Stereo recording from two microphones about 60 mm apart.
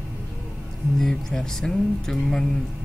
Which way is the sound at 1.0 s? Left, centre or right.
Centre.